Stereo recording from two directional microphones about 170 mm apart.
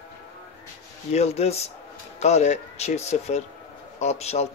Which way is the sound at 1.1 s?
40° left (ahead or behind).